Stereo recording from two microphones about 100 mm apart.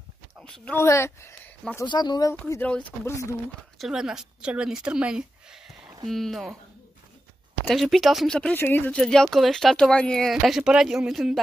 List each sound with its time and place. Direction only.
0.4 s speech: 5° left (ahead or behind)
0.7 s speech: 25° left (ahead or behind)
1.9 s speech: 45° left (ahead or behind)
2.6 s speech: 15° left (ahead or behind)
3.1 s speech: 30° left (ahead or behind)
3.7 s speech: 5° right (ahead or behind)
7.6 s speech: centre (ahead or behind)
8.5 s speech: 20° left (ahead or behind)
8.9 s speech: 5° left (ahead or behind)
10.3 s speech: 5° right (ahead or behind)